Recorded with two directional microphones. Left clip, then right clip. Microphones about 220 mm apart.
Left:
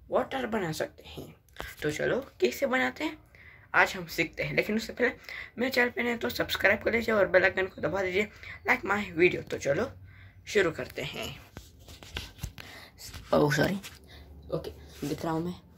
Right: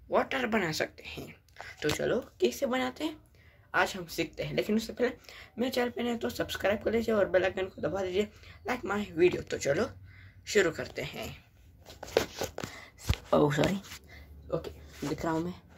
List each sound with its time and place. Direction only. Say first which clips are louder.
0.1 s speech: right 1 dB; 10° right (ahead or behind)
12.7 s a sound: right 6 dB; centre (ahead or behind)
15.1 s speech: even; centre (ahead or behind)